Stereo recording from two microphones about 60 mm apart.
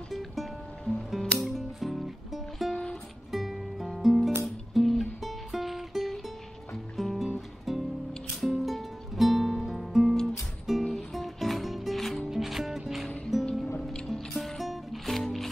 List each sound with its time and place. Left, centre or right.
0.1 s music: centre
2.7 s music: centre
3.3 s music: centre